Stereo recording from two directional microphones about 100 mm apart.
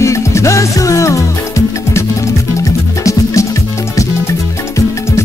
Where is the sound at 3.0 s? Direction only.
30° left (ahead or behind).